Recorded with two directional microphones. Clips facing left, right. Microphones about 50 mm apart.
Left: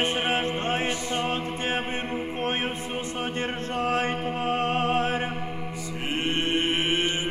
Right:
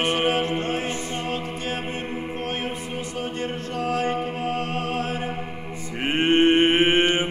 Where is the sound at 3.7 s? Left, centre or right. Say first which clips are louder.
Right 2 dB; left.